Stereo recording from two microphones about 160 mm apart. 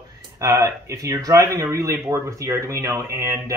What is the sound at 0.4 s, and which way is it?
Speech, 20° right (ahead or behind).